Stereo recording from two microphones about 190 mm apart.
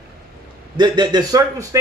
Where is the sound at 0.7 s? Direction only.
25° right (ahead or behind).